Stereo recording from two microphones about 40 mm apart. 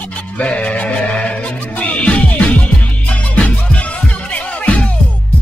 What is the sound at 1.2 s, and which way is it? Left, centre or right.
Music, left.